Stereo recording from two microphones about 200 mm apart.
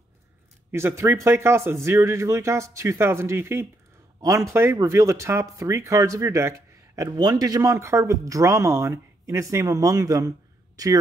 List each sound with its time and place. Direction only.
0.7 s speech: 10° right (ahead or behind)